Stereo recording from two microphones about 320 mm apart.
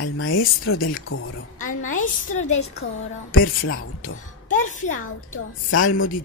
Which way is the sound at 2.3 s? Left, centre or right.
Left.